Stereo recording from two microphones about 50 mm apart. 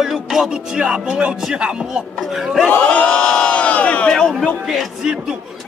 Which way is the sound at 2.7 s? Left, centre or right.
Left.